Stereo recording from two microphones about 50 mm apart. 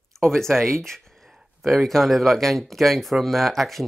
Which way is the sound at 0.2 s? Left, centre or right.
Centre.